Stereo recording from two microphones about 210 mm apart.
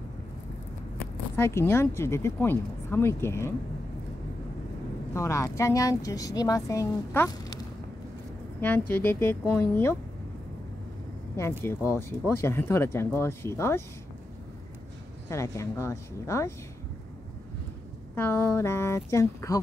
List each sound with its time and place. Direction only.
1.3 s speech: 10° left (ahead or behind)
5.1 s speech: 15° left (ahead or behind)
11.3 s speech: 10° left (ahead or behind)
15.2 s speech: 15° left (ahead or behind)
18.1 s speech: 10° left (ahead or behind)